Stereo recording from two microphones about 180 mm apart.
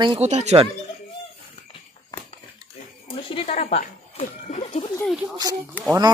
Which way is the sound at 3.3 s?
35° left (ahead or behind).